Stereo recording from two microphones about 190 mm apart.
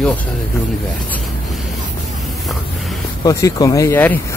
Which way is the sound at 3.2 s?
20° left (ahead or behind).